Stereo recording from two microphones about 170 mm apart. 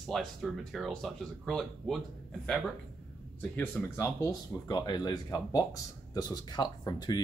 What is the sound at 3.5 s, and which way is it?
Speech, 10° left (ahead or behind).